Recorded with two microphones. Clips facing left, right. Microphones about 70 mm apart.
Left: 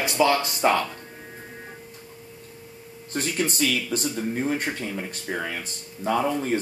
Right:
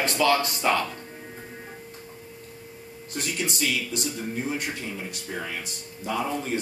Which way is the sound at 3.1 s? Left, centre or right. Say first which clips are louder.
Left 4 dB; left.